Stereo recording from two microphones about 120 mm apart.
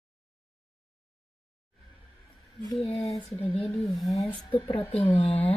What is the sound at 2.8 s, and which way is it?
Speech, 55° left (ahead or behind).